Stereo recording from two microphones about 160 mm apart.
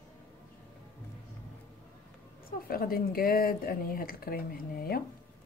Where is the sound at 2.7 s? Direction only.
65° left (ahead or behind).